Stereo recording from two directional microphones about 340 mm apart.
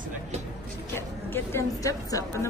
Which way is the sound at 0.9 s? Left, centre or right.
Centre.